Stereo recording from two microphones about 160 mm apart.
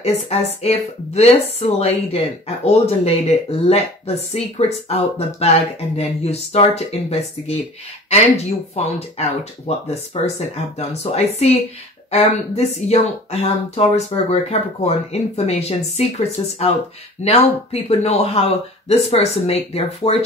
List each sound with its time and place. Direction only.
0.0 s speech: 40° left (ahead or behind)
8.7 s speech: 40° left (ahead or behind)